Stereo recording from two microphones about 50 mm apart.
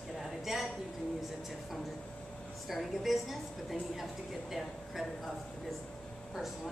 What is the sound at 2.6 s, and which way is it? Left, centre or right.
Speech, centre.